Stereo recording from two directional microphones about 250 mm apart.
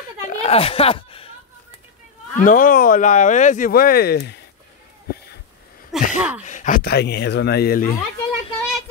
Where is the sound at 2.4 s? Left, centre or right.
Left.